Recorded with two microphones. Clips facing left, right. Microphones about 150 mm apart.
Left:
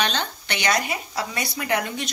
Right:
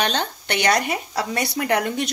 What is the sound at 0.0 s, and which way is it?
Speech, 50° right (ahead or behind).